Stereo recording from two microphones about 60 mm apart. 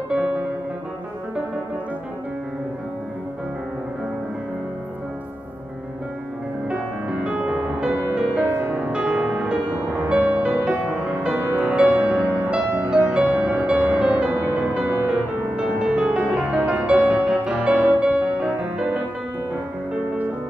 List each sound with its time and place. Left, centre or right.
7.2 s music: centre
8.5 s music: right
8.9 s music: centre